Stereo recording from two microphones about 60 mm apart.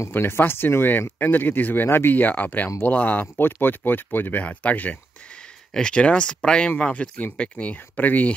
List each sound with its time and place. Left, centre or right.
0.1 s speech: left